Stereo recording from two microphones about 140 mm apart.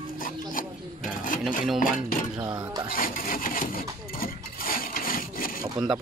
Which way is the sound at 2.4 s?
25° right (ahead or behind).